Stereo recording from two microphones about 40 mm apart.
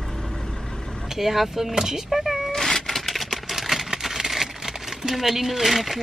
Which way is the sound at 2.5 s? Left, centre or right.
Centre.